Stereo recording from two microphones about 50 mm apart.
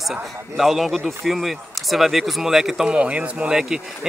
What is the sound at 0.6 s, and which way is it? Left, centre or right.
Speech, centre.